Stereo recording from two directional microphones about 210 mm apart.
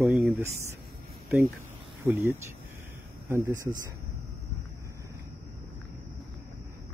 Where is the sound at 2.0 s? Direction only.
10° right (ahead or behind).